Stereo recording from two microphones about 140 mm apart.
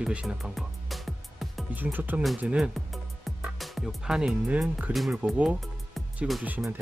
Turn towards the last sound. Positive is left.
turn(degrees=-10)  # may be behind; listen again after turning